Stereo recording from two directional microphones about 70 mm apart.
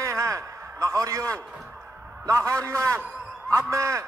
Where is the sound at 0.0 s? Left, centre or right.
Right.